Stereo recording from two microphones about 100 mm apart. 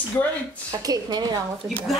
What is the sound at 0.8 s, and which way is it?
Speech, 40° right (ahead or behind).